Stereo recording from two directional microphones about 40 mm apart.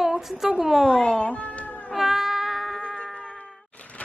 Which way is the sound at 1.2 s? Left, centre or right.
Left.